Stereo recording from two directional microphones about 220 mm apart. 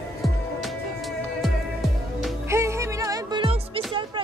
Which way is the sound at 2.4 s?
10° right (ahead or behind).